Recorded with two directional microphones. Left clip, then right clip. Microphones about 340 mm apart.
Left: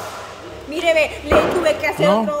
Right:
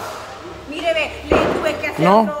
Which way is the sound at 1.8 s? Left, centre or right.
Centre.